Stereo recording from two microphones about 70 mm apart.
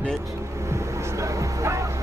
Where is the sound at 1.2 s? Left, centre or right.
Right.